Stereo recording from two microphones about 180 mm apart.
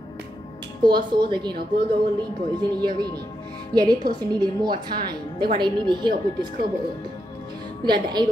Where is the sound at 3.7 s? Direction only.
25° right (ahead or behind).